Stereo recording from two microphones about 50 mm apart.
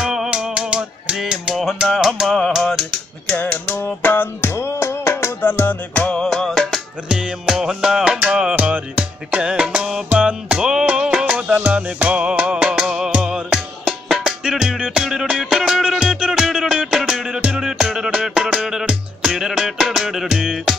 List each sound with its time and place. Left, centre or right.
0.0 s finger snapping: centre
1.1 s a sound: centre
1.5 s music: centre
2.2 s music: centre
2.6 s typing: centre
3.3 s typing: left
3.7 s music: left
6.2 s music: centre
7.1 s music: centre
8.5 s music: right; by 20.7 s centre